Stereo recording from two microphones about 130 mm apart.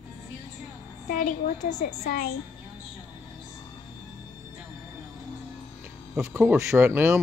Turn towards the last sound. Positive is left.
turn(degrees=-20)  # may be behind; listen again after turning